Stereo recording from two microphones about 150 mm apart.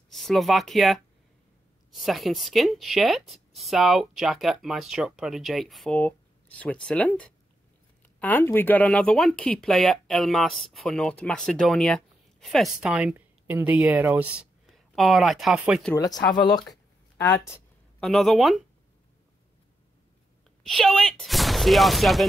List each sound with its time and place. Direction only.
0.1 s speech: centre (ahead or behind)
12.8 s speech: 10° right (ahead or behind)
16.0 s speech: 25° left (ahead or behind)
18.0 s speech: centre (ahead or behind)
20.6 s speech: centre (ahead or behind)